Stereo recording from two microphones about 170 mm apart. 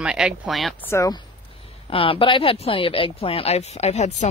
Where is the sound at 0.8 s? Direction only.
15° left (ahead or behind).